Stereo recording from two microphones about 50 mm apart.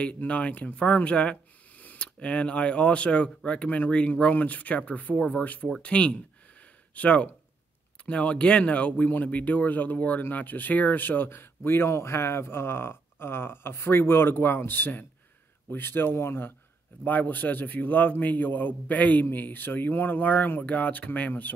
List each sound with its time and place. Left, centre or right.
0.0 s speech: left
11.9 s speech: left
17.0 s speech: left